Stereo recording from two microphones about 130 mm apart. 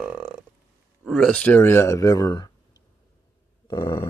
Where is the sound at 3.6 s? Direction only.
30° left (ahead or behind).